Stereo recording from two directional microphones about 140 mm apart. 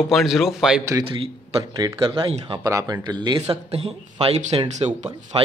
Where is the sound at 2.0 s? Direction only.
40° right (ahead or behind).